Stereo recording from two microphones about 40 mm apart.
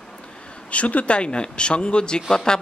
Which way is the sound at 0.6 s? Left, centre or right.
Left.